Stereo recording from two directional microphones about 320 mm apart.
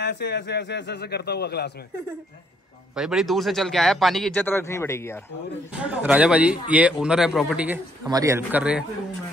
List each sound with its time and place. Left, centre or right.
0.0 s a man's voice: left
3.0 s speech: centre
5.8 s speech: centre